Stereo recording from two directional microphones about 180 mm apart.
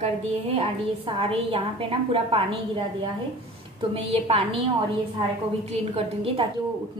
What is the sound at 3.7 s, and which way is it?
Speech, 30° right (ahead or behind).